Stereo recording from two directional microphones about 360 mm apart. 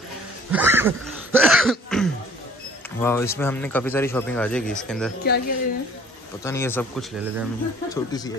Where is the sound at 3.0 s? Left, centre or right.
Centre.